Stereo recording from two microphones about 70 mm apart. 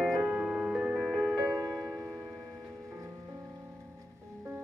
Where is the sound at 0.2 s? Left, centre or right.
Centre.